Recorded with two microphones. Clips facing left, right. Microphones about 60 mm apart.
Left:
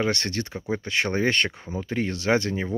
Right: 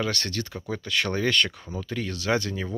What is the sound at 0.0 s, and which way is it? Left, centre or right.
Speech, left.